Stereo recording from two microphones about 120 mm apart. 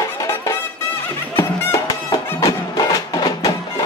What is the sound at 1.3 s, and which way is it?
Music, 20° left (ahead or behind).